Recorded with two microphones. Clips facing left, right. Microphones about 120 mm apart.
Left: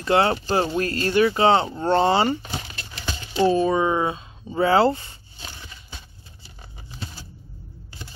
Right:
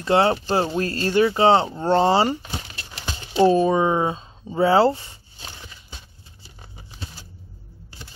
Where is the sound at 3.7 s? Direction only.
30° right (ahead or behind).